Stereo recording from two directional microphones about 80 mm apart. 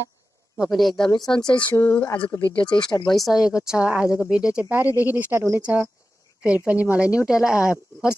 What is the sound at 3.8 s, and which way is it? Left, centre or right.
Speech, centre.